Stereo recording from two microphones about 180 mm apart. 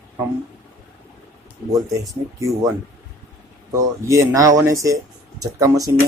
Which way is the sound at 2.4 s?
15° right (ahead or behind).